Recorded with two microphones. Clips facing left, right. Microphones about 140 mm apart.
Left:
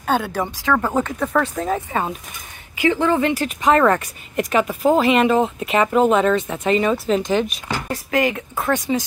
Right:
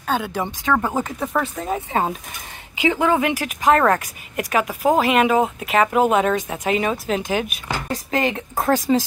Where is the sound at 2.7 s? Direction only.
15° right (ahead or behind).